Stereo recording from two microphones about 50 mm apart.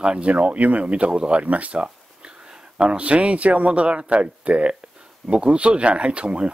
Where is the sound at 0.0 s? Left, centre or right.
Right.